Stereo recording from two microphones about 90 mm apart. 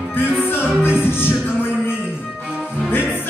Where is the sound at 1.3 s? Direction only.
10° right (ahead or behind).